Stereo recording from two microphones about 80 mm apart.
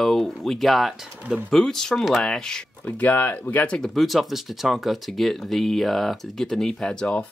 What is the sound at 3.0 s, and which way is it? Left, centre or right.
Speech, left.